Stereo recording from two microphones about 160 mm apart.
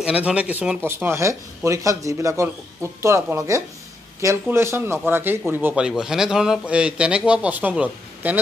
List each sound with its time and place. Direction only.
0.0 s speech: 5° right (ahead or behind)